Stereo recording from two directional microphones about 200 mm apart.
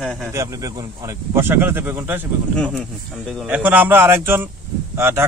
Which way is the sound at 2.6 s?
Centre (ahead or behind).